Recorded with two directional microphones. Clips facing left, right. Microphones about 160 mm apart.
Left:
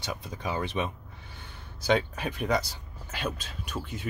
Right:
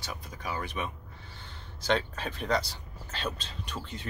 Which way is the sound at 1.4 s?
10° left (ahead or behind).